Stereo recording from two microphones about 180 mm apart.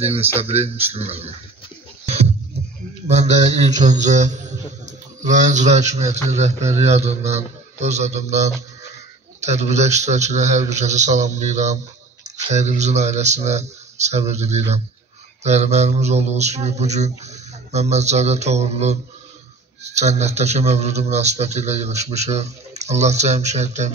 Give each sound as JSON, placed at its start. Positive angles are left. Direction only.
{"t": 0.0, "sound": "a man's voice", "side_deg": -35}
{"t": 3.1, "sound": "a man's voice", "side_deg": -40}
{"t": 20.0, "sound": "a man's voice", "side_deg": -40}